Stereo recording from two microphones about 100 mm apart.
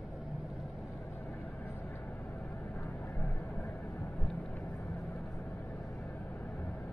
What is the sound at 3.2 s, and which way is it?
Vehicle, 20° left (ahead or behind).